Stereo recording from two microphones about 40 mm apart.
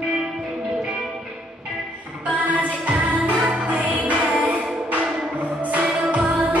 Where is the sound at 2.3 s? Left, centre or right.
Right.